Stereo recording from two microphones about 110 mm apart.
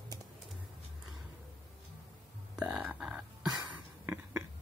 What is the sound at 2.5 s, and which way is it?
Burping, 5° right (ahead or behind).